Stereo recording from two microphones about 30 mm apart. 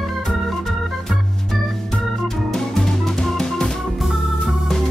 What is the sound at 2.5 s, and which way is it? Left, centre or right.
Music, centre.